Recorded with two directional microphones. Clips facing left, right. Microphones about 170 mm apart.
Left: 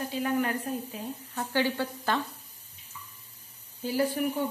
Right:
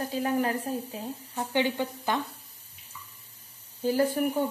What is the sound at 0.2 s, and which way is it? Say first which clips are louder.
Speech: right 1 dB; 35° right (ahead or behind).